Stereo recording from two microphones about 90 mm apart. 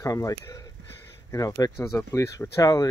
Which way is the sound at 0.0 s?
40° left (ahead or behind).